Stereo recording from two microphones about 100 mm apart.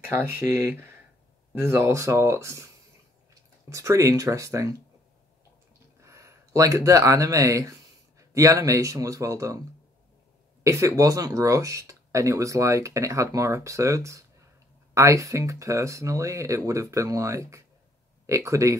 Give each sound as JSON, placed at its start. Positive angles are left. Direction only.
{"t": 0.0, "sound": "speech", "side_deg": -20}
{"t": 3.7, "sound": "speech", "side_deg": -30}
{"t": 5.9, "sound": "speech", "side_deg": -30}
{"t": 10.6, "sound": "speech", "side_deg": -30}